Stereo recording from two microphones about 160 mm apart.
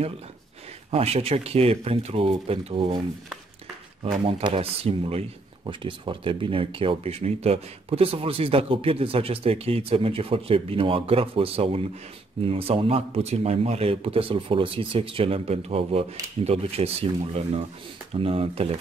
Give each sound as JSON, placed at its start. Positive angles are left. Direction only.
{"t": 0.9, "sound": "speech", "side_deg": -40}
{"t": 4.2, "sound": "speech", "side_deg": -30}